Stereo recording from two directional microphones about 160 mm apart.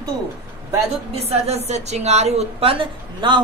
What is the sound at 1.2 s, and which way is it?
A woman's voice, 40° right (ahead or behind).